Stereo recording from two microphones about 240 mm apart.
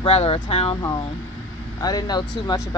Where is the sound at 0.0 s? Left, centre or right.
Left.